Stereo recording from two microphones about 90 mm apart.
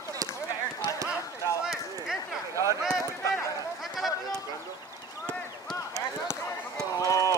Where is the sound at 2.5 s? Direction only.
35° right (ahead or behind).